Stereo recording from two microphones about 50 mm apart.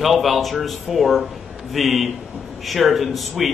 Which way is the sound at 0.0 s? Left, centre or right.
Centre.